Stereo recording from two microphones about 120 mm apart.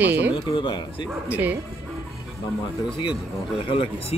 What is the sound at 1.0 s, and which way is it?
Speech, 15° right (ahead or behind).